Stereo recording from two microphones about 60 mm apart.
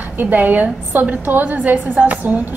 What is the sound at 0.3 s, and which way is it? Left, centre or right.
A woman's voice, right.